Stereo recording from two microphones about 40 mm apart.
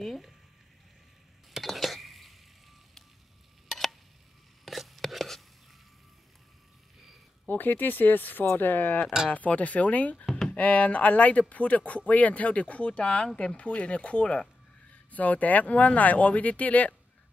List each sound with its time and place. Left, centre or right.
0.0 s speech: centre
1.5 s whispering: centre
3.6 s a sound: centre
7.4 s speech: left
9.3 s speech: left